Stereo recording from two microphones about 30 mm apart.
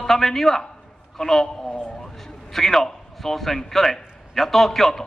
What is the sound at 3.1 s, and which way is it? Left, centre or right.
A man's voice, centre.